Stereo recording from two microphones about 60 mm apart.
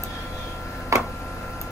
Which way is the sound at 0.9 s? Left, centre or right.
Right.